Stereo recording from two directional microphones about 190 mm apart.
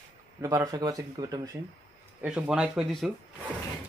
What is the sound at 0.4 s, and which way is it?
Speech, 20° right (ahead or behind).